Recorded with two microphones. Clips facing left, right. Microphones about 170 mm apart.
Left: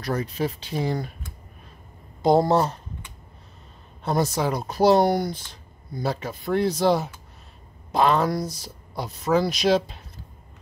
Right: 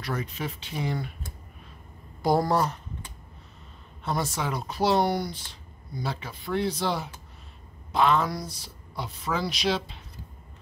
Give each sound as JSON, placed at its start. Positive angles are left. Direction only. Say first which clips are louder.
{"t": 0.0, "sound": "speech", "louder": "left 6 dB", "side_deg": 35}
{"t": 2.2, "sound": "speech", "louder": "left 5 dB", "side_deg": 25}
{"t": 4.0, "sound": "speech", "louder": "left 6 dB", "side_deg": 40}